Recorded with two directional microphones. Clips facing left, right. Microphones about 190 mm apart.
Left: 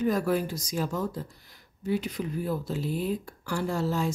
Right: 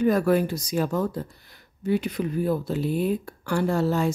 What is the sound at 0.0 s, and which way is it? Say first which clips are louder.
Speech: right 5 dB; 65° right (ahead or behind).